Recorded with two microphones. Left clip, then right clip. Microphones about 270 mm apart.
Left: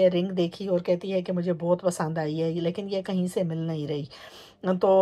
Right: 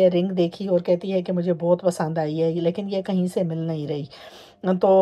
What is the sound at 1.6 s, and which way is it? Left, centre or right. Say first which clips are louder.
Speech: right 5 dB; left.